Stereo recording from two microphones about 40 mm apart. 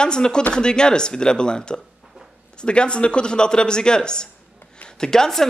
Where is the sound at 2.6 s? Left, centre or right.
Left.